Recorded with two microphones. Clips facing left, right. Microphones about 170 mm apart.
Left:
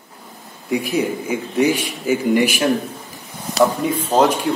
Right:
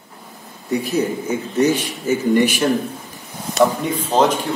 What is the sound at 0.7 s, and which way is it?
Speech, 15° left (ahead or behind).